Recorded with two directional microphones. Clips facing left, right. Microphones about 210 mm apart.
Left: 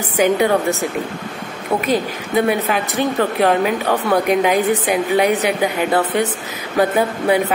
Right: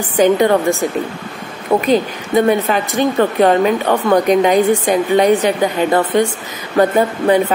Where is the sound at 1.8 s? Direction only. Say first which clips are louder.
Right 4 dB; 5° left (ahead or behind).